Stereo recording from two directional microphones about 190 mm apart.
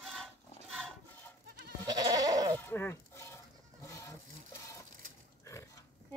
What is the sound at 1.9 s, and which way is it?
Goat, 20° right (ahead or behind).